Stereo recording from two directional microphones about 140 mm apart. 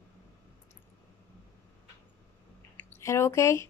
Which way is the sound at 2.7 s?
20° left (ahead or behind).